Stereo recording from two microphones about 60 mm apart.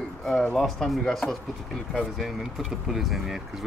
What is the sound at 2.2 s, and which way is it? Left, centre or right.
Speech, centre.